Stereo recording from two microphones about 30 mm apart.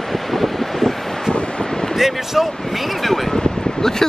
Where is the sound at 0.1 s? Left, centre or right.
Centre.